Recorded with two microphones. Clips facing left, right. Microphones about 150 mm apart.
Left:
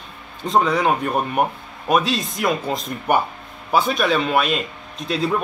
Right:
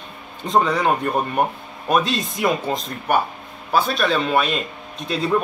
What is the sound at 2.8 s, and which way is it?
Speech, 15° left (ahead or behind).